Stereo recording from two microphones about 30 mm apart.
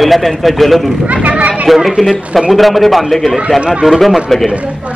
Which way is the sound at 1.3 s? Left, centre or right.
Right.